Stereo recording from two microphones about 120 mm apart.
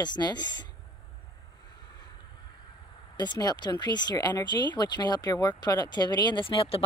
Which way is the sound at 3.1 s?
35° left (ahead or behind).